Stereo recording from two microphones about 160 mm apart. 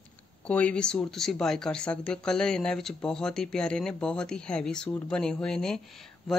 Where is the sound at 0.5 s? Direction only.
10° left (ahead or behind).